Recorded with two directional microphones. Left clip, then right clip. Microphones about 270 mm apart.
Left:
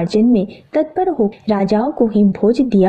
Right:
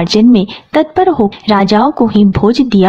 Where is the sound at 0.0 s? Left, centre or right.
Centre.